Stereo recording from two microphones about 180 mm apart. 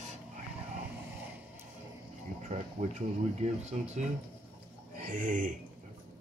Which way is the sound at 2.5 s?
40° right (ahead or behind).